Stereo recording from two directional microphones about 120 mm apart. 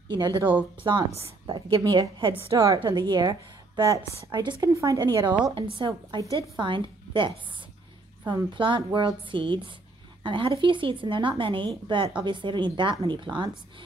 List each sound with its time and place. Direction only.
0.1 s a woman's voice: 40° right (ahead or behind)